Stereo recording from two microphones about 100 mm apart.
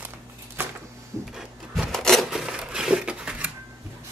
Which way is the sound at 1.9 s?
5° left (ahead or behind).